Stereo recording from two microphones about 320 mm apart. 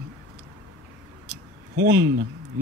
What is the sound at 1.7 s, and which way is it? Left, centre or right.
Speech, right.